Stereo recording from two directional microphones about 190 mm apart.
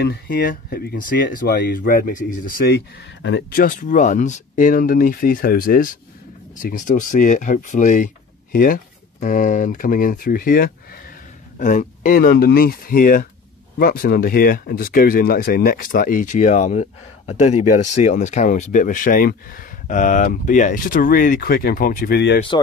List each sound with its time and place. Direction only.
0.0 s speech: 55° left (ahead or behind)
3.6 s speech: 40° left (ahead or behind)
22.5 s speech: 25° left (ahead or behind)